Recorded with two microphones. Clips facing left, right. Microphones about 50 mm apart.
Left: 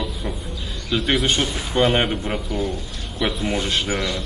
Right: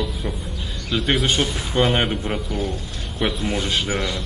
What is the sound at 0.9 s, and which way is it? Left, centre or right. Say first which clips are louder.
Speech: even; centre.